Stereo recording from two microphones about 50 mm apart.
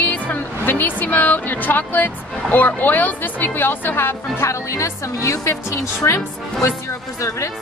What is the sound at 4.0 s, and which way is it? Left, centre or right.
Speech, left.